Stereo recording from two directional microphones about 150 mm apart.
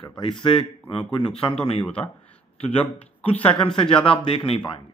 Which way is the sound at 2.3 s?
40° left (ahead or behind).